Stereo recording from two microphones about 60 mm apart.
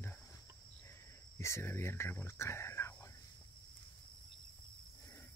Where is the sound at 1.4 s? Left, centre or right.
Left.